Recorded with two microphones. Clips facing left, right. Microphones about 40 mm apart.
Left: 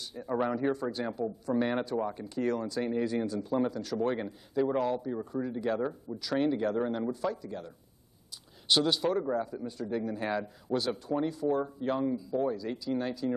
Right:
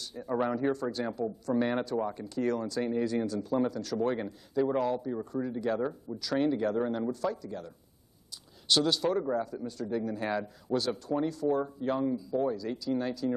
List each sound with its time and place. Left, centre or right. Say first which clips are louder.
0.0 s a man's voice: even; centre
0.9 s speech: right 1 dB; centre
1.5 s speech: right 1 dB; centre
2.2 s speech: even; centre
9.7 s speech: right 1 dB; left
11.4 s speech: right 1 dB; centre
11.8 s speech: even; centre
12.5 s speech: right 1 dB; centre